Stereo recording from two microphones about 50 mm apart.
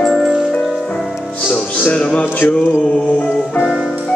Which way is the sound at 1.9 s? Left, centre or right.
Centre.